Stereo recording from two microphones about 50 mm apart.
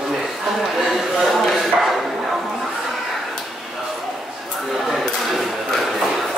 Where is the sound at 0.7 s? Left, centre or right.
Centre.